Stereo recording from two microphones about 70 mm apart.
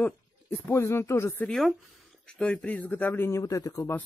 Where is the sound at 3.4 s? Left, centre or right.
Left.